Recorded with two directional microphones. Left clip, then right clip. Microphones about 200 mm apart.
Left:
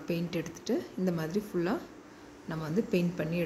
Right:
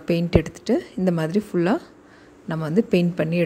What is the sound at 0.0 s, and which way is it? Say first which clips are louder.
A woman's voice: right 13 dB; 45° right (ahead or behind).